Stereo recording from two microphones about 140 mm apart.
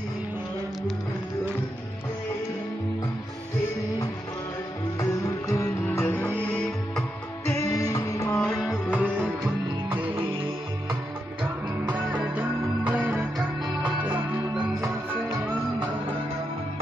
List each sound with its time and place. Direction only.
5.5 s music: 20° left (ahead or behind)
7.5 s music: 25° left (ahead or behind)
8.4 s music: centre (ahead or behind)
11.9 s music: 10° right (ahead or behind)